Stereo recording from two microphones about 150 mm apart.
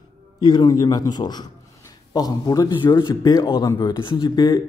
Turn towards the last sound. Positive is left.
turn(degrees=30)  # may be behind; listen again after turning